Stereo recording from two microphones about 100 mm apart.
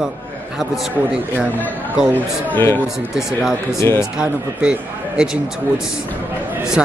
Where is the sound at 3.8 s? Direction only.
25° left (ahead or behind).